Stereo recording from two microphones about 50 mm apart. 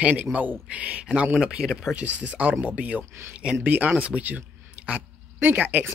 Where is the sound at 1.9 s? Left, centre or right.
Right.